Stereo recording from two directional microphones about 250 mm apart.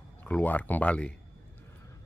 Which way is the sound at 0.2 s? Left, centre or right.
Centre.